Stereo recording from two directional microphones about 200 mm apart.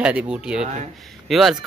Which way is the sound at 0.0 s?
5° right (ahead or behind).